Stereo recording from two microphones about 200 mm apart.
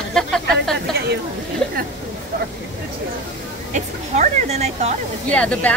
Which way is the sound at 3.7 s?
35° right (ahead or behind).